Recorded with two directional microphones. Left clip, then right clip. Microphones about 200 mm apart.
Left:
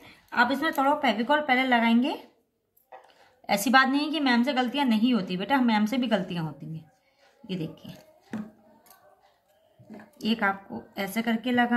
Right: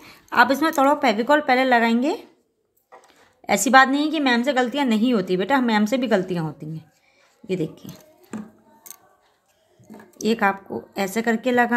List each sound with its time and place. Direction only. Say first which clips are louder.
0.0 s a woman's voice: right 7 dB; 40° right (ahead or behind)
3.4 s a woman's voice: right 6 dB; 30° right (ahead or behind)
10.1 s a woman's voice: right 6 dB; 35° right (ahead or behind)